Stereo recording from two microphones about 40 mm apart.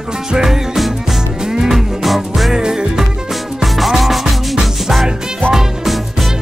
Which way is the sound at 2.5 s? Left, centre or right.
Centre.